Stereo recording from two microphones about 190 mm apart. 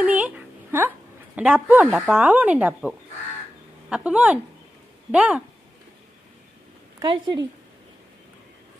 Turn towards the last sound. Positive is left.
turn(degrees=-25)  # may be behind; listen again after turning